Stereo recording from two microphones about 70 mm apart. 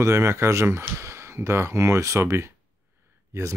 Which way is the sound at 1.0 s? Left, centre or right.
Right.